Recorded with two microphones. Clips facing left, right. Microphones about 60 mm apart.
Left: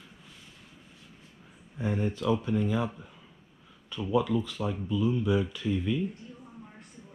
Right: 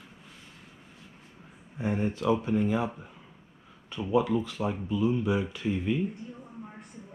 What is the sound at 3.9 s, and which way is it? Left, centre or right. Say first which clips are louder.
Speech: right 1 dB; right.